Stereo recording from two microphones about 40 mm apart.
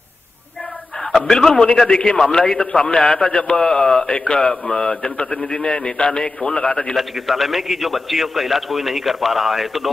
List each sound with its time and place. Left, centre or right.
1.2 s a man's voice: centre
7.0 s a man's voice: centre